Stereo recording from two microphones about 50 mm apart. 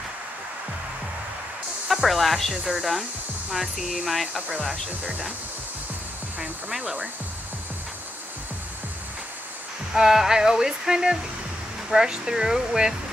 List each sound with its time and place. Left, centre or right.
1.9 s speech: centre
6.8 s speech: right
9.9 s a sound: centre